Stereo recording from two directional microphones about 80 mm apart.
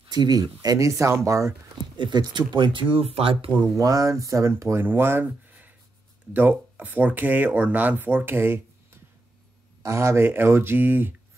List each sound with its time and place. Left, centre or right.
0.0 s speech: right
2.0 s speech: right
3.7 s speech: right